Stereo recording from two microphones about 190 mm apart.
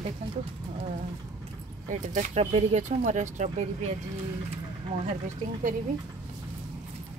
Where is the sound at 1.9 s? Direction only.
40° right (ahead or behind).